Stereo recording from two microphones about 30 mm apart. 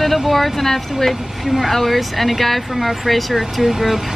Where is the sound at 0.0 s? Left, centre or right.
Centre.